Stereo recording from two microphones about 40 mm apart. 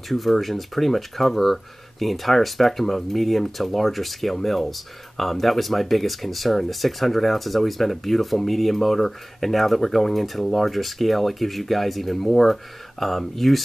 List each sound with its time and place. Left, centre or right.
0.1 s speech: centre